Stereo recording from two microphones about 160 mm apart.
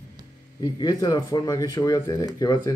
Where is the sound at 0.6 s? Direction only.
25° left (ahead or behind).